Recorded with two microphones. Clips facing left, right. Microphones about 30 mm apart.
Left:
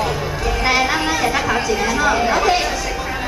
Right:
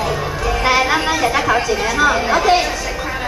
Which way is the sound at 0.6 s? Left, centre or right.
Centre.